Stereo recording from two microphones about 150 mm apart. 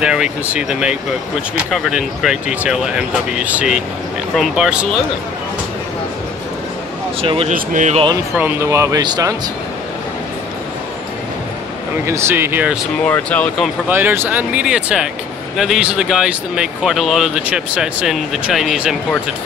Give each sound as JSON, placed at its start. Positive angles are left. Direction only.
{"t": 0.0, "sound": "speech", "side_deg": -5}
{"t": 7.2, "sound": "speech", "side_deg": -35}
{"t": 7.4, "sound": "speech", "side_deg": -55}
{"t": 8.4, "sound": "speech", "side_deg": -15}
{"t": 12.1, "sound": "speech", "side_deg": -15}
{"t": 13.0, "sound": "speech", "side_deg": 10}
{"t": 13.8, "sound": "speech", "side_deg": -15}